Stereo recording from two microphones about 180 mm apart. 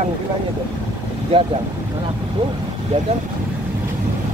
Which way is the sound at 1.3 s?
30° right (ahead or behind).